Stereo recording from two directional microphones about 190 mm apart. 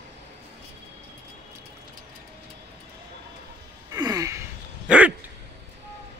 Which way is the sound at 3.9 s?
20° right (ahead or behind).